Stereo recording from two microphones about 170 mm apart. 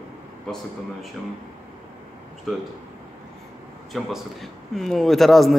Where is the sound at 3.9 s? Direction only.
Centre (ahead or behind).